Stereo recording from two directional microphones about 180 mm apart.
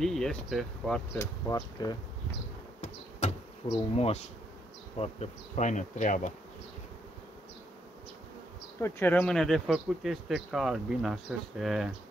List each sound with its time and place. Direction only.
0.0 s speech: 5° left (ahead or behind)
1.1 s speech: 20° left (ahead or behind)
2.8 s insect: 40° left (ahead or behind)
3.9 s bee: 35° left (ahead or behind)
8.8 s speech: 10° left (ahead or behind)